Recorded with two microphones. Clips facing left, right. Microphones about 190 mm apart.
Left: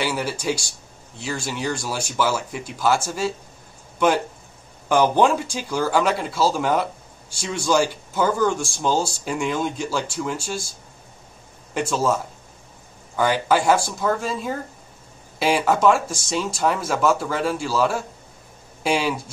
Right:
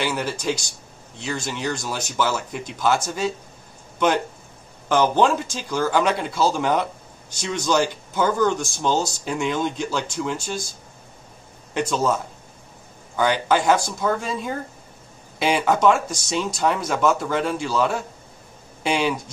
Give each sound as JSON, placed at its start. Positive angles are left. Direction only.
{"t": 0.0, "sound": "speech", "side_deg": 10}
{"t": 4.8, "sound": "speech", "side_deg": 10}
{"t": 11.7, "sound": "speech", "side_deg": 5}